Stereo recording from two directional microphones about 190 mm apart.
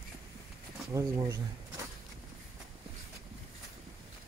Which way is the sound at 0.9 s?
15° right (ahead or behind).